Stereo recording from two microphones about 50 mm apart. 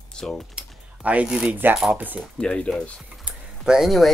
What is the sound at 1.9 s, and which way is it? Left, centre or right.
Speech, right.